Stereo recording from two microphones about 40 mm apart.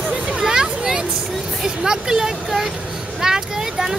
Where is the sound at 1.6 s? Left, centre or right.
Centre.